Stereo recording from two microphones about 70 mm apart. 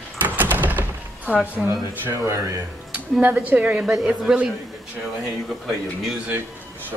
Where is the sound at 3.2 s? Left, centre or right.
Right.